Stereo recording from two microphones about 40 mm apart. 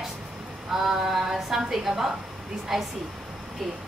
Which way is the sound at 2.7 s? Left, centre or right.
Centre.